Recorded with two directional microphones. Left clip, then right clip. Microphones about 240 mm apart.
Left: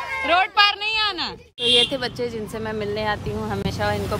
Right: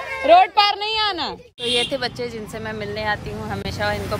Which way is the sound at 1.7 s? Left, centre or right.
Centre.